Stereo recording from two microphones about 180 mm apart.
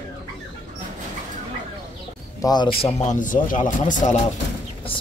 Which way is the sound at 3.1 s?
45° left (ahead or behind).